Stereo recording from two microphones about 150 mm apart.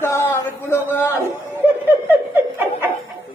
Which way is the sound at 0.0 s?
15° left (ahead or behind).